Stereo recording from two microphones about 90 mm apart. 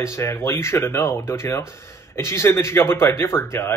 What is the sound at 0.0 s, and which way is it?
Speech, 30° left (ahead or behind).